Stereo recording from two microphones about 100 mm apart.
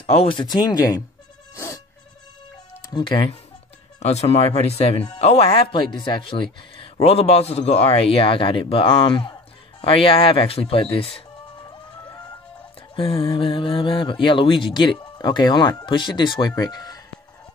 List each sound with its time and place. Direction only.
0.0 s speech: 75° left (ahead or behind)
0.5 s speech: 40° left (ahead or behind)
1.5 s mosquito: 35° left (ahead or behind)
2.9 s speech: 55° left (ahead or behind)
4.0 s a man's voice: 90° left; by 6.3 s 50° left (ahead or behind)
6.8 s a man's voice: 80° left
12.9 s speech: 65° left (ahead or behind); by 17.0 s 40° left (ahead or behind)